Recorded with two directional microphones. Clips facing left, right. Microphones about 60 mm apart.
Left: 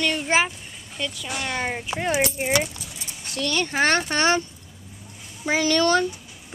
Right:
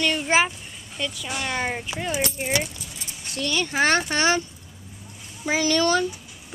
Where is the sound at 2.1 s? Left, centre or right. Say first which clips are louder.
Left 4 dB; left.